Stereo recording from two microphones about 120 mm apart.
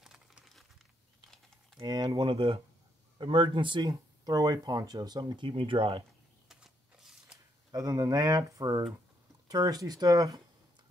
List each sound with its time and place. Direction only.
0.0 s crumpling: 5° right (ahead or behind)
1.8 s speech: 40° right (ahead or behind)
6.5 s a sound: 5° right (ahead or behind)
7.7 s speech: 30° right (ahead or behind)